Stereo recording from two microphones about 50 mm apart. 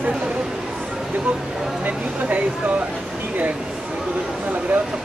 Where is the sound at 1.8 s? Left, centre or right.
Right.